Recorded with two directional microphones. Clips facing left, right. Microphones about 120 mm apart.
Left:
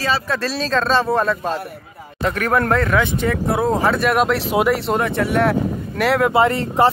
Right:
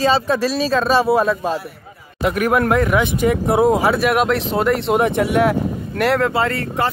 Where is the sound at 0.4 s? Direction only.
10° right (ahead or behind).